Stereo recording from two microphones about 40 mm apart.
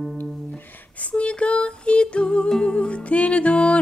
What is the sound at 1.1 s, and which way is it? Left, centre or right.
Music, left.